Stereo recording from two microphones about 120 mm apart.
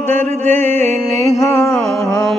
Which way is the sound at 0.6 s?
65° right (ahead or behind).